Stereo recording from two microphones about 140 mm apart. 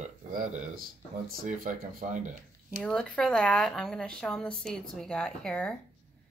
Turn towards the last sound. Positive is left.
turn(degrees=5)  # may be behind; listen again after turning